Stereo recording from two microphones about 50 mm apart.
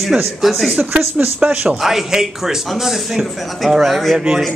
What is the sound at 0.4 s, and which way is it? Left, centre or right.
Speech, centre.